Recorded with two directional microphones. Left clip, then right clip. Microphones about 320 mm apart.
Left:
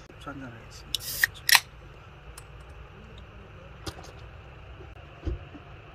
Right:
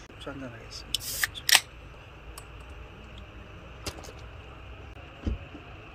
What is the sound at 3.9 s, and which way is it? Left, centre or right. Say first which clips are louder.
Vehicle: right 1 dB; right.